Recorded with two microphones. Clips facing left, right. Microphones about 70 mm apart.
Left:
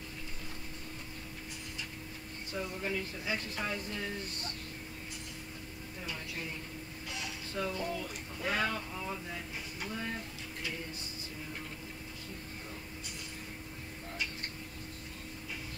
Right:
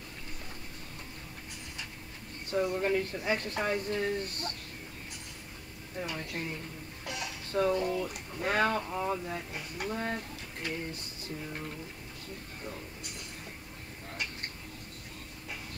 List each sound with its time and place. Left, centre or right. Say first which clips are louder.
2.5 s speech: right 8 dB; right
6.0 s a woman's voice: right 3 dB; right
7.1 s a sound: right 5 dB; right
8.1 s speech: right 4 dB; right